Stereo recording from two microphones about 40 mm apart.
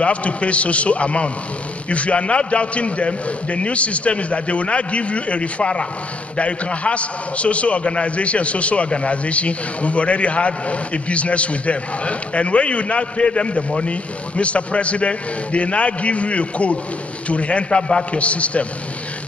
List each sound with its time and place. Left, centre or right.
0.0 s a man's voice: left